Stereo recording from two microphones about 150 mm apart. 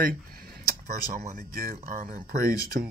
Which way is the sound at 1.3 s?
75° right (ahead or behind).